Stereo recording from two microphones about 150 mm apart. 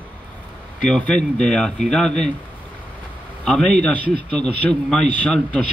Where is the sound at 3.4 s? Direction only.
5° left (ahead or behind).